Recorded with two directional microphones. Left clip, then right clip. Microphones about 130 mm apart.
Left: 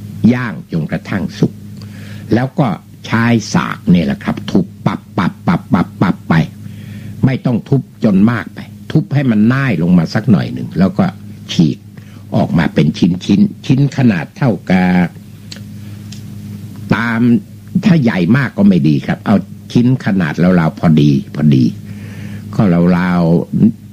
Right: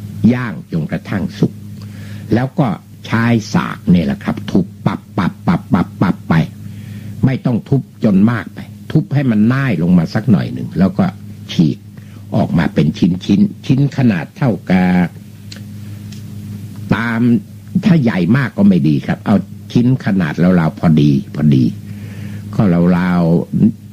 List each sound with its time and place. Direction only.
0.2 s a man's voice: 20° left (ahead or behind)
16.8 s a man's voice: 20° left (ahead or behind)